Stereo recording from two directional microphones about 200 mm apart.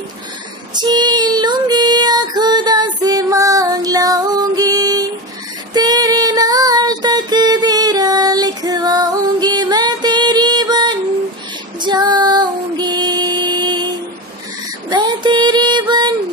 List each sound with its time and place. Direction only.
0.7 s music: 20° right (ahead or behind)
5.7 s female singing: 20° right (ahead or behind)
14.9 s female singing: 20° right (ahead or behind)